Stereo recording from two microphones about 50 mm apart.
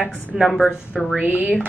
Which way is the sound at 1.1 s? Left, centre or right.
Right.